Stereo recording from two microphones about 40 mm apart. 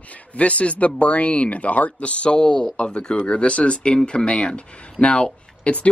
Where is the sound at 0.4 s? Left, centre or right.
Left.